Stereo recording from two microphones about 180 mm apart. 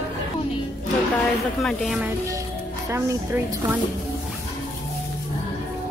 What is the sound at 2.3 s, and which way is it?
Speech, 15° right (ahead or behind).